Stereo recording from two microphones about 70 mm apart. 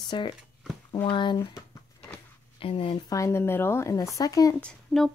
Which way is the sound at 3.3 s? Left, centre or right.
Left.